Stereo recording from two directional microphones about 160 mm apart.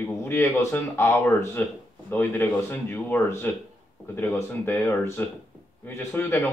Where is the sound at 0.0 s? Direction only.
15° left (ahead or behind).